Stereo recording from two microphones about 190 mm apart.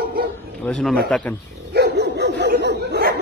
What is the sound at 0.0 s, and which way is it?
Bow-wow, 50° right (ahead or behind).